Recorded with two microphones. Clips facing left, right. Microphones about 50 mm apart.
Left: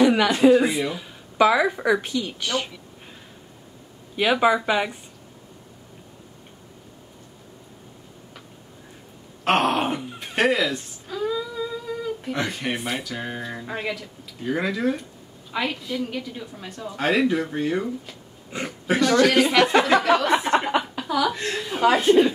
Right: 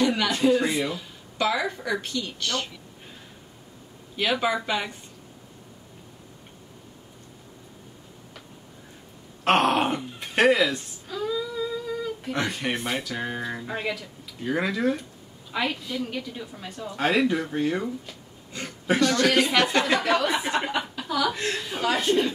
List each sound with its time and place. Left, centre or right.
0.0 s a woman's voice: centre
4.2 s a woman's voice: centre
9.4 s a woman's voice: centre
18.5 s speech: centre
18.9 s a woman's voice: centre